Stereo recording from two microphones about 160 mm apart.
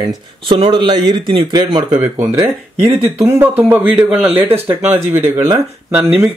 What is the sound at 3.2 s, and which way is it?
Speech, 10° right (ahead or behind).